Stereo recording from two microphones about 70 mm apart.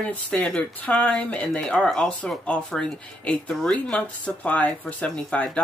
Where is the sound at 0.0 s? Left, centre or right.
Centre.